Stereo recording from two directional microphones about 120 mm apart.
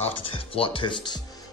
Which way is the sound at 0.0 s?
50° left (ahead or behind).